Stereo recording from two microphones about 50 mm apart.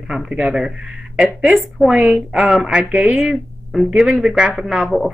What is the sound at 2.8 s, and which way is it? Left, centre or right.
Speech, right.